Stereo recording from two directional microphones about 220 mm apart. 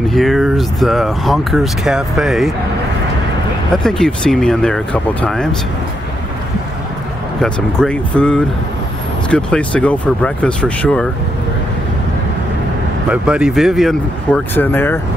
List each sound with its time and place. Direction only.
0.1 s speech: centre (ahead or behind)
3.7 s speech: centre (ahead or behind)
7.3 s speech: 5° left (ahead or behind)
13.1 s speech: 5° right (ahead or behind)